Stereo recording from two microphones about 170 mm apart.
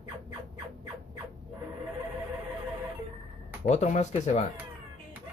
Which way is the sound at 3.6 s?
45° left (ahead or behind).